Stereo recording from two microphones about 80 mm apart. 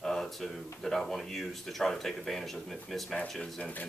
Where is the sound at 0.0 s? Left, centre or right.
Centre.